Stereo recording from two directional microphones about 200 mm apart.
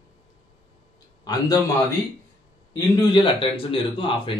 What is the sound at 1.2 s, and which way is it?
Speech, 20° left (ahead or behind).